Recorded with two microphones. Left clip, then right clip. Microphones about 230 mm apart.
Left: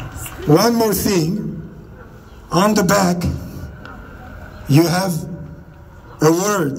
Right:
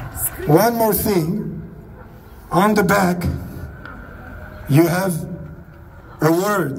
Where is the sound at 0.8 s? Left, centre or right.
Left.